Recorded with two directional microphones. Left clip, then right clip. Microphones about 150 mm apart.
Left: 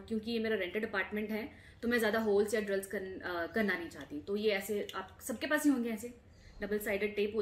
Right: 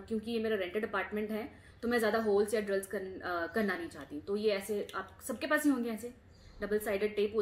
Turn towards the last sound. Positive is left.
turn(degrees=5)  # may be behind; listen again after turning